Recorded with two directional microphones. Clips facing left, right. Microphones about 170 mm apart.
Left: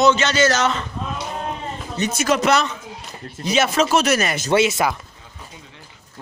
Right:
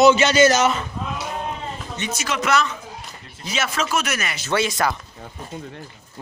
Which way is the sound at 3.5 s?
20° left (ahead or behind).